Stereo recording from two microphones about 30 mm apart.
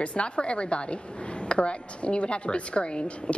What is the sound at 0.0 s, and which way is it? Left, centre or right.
A woman's voice, left.